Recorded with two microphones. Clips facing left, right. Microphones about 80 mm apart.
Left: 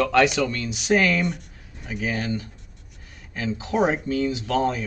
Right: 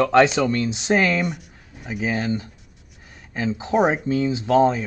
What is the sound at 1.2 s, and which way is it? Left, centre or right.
Speech, centre.